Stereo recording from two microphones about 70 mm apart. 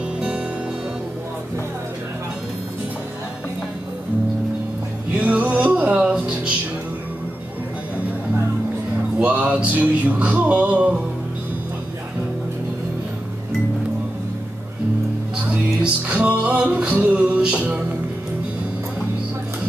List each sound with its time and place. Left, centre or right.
5.1 s music: right
9.2 s music: centre
15.8 s music: centre